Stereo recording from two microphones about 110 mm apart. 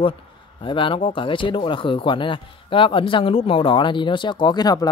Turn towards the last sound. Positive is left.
turn(degrees=35)  # may be behind; listen again after turning